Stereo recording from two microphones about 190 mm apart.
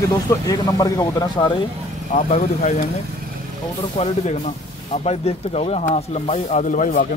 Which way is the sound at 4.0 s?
30° left (ahead or behind).